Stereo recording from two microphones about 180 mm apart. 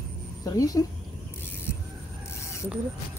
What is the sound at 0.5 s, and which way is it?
Speech, 20° left (ahead or behind).